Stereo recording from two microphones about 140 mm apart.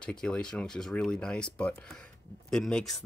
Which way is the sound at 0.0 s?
5° left (ahead or behind).